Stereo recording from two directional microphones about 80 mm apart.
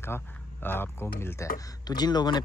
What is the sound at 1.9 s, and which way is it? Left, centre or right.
Speech, left.